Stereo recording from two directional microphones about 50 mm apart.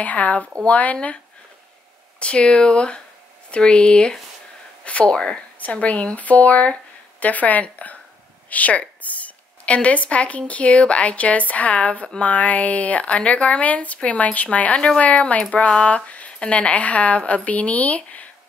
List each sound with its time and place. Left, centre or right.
0.0 s speech: left
2.1 s a woman's voice: left